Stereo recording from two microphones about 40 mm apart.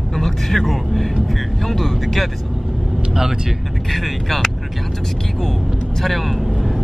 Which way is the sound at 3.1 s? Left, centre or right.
Centre.